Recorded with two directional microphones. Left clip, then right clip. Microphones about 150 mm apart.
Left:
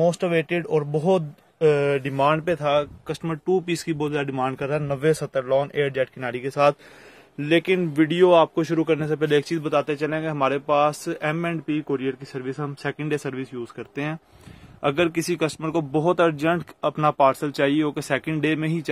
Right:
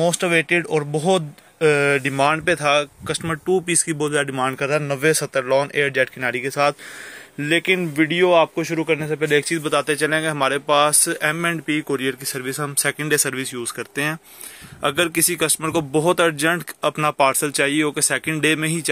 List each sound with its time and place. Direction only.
0.0 s speech: centre (ahead or behind)
7.9 s speech: 20° left (ahead or behind)
8.2 s speech: 35° left (ahead or behind); by 9.6 s 20° left (ahead or behind)
9.6 s speech: centre (ahead or behind)